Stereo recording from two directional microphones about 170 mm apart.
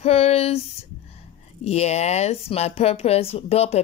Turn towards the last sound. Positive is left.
turn(degrees=35)  # may be behind; listen again after turning